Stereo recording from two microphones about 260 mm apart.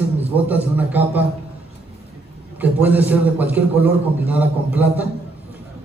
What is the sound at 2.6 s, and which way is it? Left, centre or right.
A man's voice, centre.